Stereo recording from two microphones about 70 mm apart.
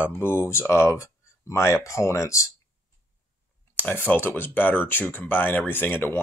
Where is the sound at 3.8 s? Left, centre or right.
Left.